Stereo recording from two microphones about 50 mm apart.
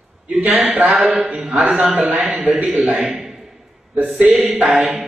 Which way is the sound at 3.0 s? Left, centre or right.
Centre.